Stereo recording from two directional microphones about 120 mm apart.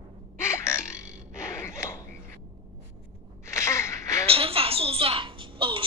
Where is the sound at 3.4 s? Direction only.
25° left (ahead or behind).